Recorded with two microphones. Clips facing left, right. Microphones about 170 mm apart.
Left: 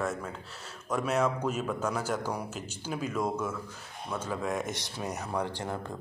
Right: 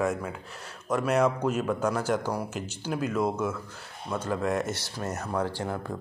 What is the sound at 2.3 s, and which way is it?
Speech, 10° right (ahead or behind).